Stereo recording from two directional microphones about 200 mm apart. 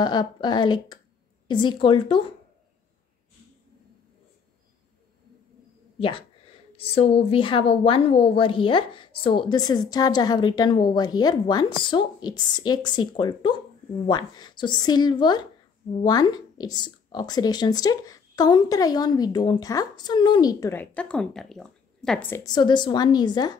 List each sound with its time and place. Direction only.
0.0 s speech: 20° left (ahead or behind)
5.9 s speech: 25° left (ahead or behind); by 22.4 s 5° left (ahead or behind)
22.4 s speech: 20° left (ahead or behind)